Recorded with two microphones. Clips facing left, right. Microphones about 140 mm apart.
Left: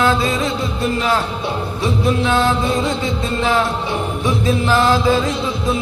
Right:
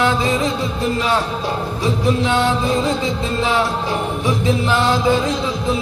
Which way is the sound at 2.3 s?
20° right (ahead or behind).